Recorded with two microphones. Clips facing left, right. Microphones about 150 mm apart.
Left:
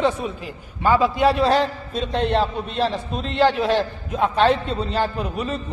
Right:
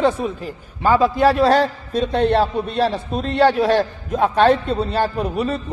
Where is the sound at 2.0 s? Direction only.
40° right (ahead or behind).